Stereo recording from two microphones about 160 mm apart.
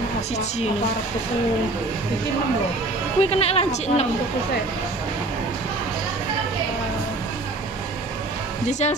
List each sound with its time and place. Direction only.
3.2 s speech: 40° left (ahead or behind)
8.6 s speech: 45° left (ahead or behind)